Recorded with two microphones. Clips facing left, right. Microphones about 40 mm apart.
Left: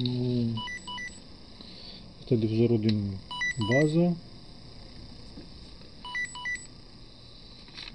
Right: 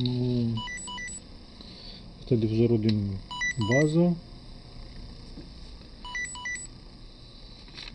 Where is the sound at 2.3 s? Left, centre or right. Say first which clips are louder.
Right 1 dB; centre.